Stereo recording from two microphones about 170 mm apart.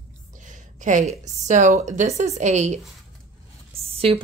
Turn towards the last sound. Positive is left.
turn(degrees=-35)  # may be behind; listen again after turning